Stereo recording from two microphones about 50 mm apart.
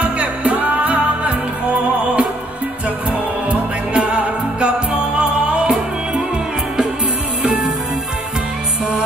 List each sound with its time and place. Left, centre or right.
0.0 s music: right
3.4 s music: right
7.4 s music: centre